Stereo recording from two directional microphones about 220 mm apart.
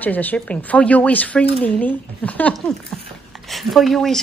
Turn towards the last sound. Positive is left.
turn(degrees=0)  # may be behind; listen again after turning